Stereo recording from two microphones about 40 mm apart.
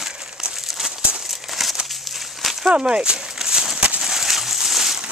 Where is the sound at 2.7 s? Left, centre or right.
Right.